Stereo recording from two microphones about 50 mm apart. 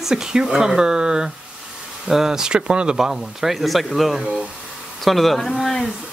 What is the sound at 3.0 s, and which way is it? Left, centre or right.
Speech, centre.